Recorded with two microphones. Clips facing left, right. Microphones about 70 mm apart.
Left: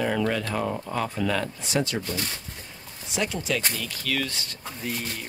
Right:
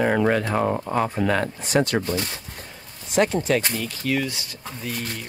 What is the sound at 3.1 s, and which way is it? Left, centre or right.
Speech, right.